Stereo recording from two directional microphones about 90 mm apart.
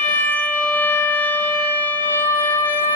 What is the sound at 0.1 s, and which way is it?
Siren, 20° left (ahead or behind).